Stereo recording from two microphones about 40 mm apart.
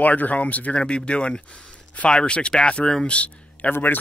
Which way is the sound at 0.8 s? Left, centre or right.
Left.